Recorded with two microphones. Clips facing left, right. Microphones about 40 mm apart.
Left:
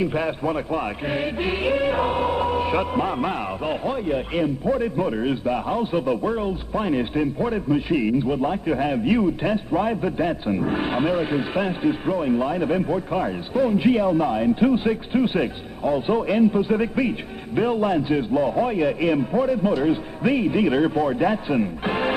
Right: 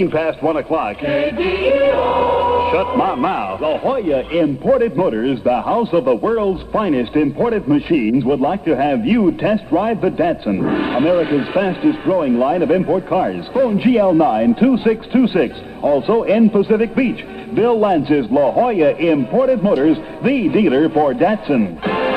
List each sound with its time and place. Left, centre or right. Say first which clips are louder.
0.0 s speech: right 7 dB; right